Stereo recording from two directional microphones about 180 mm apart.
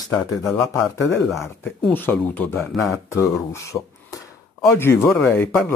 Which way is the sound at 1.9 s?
10° left (ahead or behind).